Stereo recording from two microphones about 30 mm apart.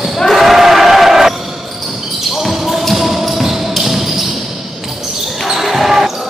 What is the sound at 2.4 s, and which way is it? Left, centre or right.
Basketball bounce, centre.